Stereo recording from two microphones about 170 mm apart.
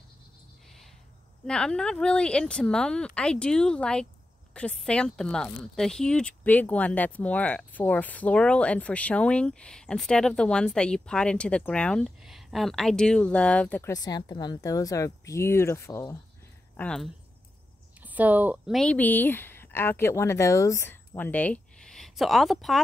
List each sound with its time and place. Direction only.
1.5 s speech: 5° left (ahead or behind)
13.9 s a woman's voice: 20° left (ahead or behind)
16.7 s speech: 5° left (ahead or behind)
18.0 s speech: 10° right (ahead or behind)
18.8 s speech: 10° left (ahead or behind)